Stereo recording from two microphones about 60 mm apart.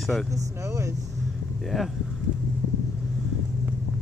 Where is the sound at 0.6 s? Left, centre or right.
Right.